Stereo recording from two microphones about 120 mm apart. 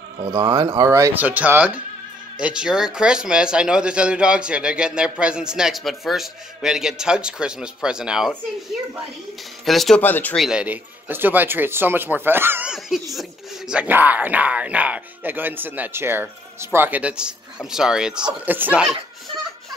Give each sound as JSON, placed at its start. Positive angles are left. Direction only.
{"t": 0.2, "sound": "speech", "side_deg": -40}
{"t": 1.2, "sound": "a man's voice", "side_deg": -15}
{"t": 9.7, "sound": "a man's voice", "side_deg": 0}
{"t": 10.0, "sound": "speech", "side_deg": 15}
{"t": 10.3, "sound": "a man's voice", "side_deg": 0}
{"t": 10.6, "sound": "speech", "side_deg": -15}
{"t": 13.1, "sound": "speech", "side_deg": -5}